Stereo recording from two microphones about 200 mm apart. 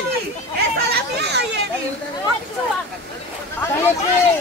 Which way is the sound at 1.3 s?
60° right (ahead or behind).